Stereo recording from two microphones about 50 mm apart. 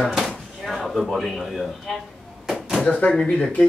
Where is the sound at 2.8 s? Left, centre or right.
Left.